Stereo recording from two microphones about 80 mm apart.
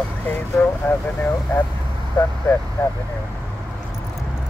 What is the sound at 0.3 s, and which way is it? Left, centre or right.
Speech, left.